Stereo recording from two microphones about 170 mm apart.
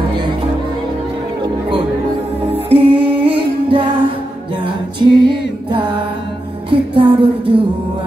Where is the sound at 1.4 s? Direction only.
30° right (ahead or behind).